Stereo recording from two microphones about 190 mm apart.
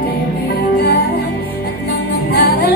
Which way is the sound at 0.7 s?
60° left (ahead or behind).